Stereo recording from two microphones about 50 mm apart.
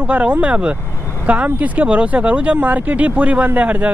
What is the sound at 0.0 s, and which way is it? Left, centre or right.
Speech, right.